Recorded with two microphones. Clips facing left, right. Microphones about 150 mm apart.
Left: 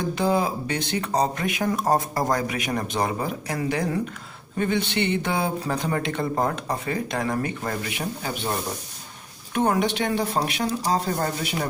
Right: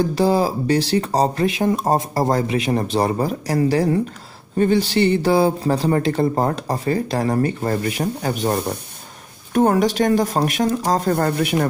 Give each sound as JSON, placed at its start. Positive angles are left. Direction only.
{"t": 0.0, "sound": "speech", "side_deg": -35}
{"t": 7.8, "sound": "speech", "side_deg": -45}